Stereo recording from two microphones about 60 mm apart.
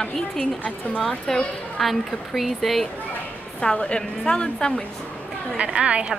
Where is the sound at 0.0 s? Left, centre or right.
Centre.